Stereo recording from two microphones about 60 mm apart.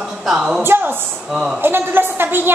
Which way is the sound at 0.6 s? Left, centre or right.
Right.